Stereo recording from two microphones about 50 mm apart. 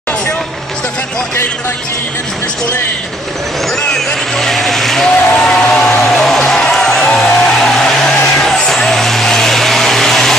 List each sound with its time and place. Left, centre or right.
3.9 s vehicle: centre
5.1 s a sound: centre
5.6 s music: centre